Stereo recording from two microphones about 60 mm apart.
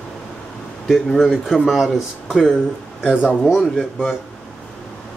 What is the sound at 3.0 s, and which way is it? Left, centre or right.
Speech, centre.